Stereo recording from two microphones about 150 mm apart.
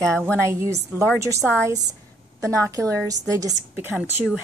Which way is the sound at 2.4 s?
20° right (ahead or behind).